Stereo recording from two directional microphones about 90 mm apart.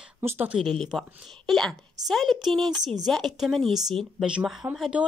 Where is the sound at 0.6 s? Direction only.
5° left (ahead or behind).